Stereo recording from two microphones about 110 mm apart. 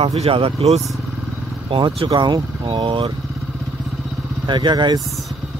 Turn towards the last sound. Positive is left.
turn(degrees=-45)  # may be behind; listen again after turning